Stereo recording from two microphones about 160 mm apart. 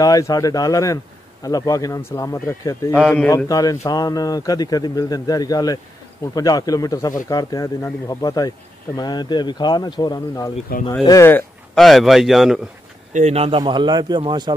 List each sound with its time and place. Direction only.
0.0 s speech: 20° left (ahead or behind)
3.0 s speech: 5° left (ahead or behind)
3.3 s speech: 20° left (ahead or behind)
11.7 s a man's voice: centre (ahead or behind)
13.1 s a man's voice: 45° right (ahead or behind); by 14.5 s 25° right (ahead or behind)